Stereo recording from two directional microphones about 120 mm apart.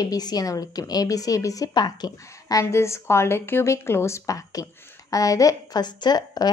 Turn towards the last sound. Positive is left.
turn(degrees=35)  # may be behind; listen again after turning